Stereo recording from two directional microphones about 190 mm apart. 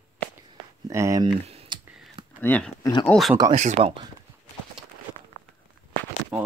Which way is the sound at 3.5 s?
35° right (ahead or behind).